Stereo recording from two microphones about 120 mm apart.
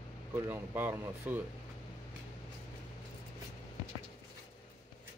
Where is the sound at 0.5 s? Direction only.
15° right (ahead or behind).